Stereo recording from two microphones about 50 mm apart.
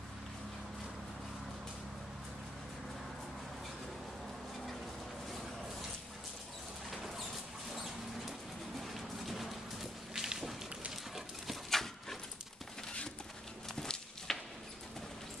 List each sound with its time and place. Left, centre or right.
7.7 s bird: centre
11.7 s dog: centre
13.7 s a sound: centre